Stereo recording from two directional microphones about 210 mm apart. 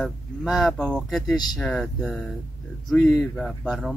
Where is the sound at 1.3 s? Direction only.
20° left (ahead or behind).